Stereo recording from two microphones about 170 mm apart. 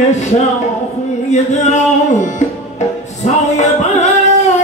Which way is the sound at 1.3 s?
45° left (ahead or behind).